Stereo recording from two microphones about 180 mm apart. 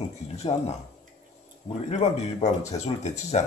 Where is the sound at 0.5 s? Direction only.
35° left (ahead or behind).